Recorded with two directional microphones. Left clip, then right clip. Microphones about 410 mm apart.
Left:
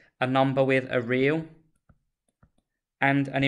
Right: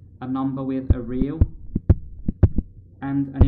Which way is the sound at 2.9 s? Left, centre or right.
Centre.